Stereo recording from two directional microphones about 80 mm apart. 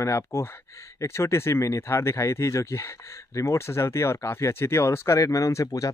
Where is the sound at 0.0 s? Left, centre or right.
Left.